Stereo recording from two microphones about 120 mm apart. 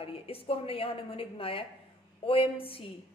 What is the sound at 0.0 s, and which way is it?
A woman's voice, 50° left (ahead or behind).